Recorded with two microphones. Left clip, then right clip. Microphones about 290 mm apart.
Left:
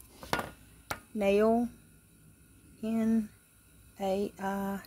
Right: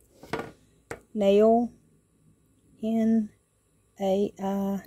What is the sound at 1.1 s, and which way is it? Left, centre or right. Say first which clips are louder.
Speech: right 6 dB; right.